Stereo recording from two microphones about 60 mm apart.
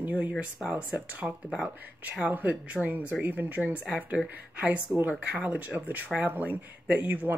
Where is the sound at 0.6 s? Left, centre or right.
Centre.